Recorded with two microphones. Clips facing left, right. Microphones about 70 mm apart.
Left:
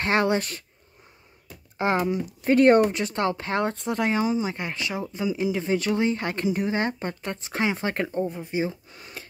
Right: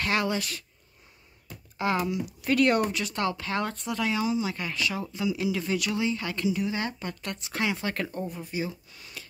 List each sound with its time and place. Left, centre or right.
0.0 s speech: left
1.8 s speech: left